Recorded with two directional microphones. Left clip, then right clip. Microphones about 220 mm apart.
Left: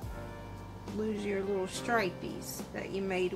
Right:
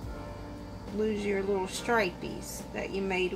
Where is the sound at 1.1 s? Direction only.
15° left (ahead or behind).